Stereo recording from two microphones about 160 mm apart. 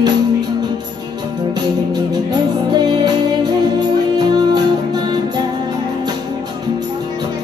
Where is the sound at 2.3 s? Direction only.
25° right (ahead or behind).